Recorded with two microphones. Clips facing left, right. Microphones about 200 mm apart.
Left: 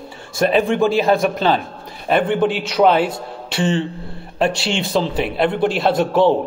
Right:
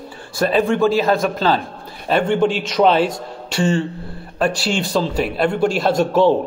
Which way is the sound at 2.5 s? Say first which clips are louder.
Even; 15° left (ahead or behind).